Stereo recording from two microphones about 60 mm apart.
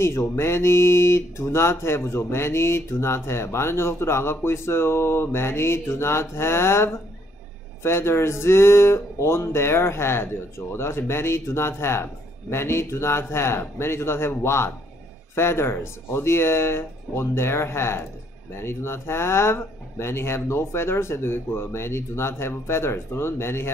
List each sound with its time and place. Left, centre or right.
0.0 s speech: left